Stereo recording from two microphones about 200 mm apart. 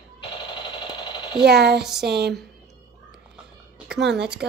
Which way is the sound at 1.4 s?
55° right (ahead or behind).